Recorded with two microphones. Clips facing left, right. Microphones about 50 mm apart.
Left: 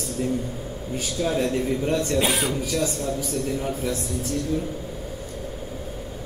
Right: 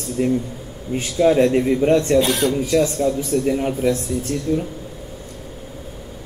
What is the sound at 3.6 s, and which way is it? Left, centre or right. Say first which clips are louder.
Speech: right 7 dB; right.